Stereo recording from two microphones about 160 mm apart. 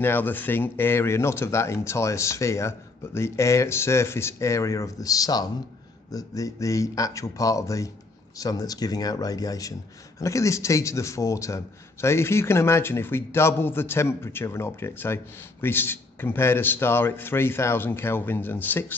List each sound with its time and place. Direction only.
0.0 s a man's voice: 10° left (ahead or behind)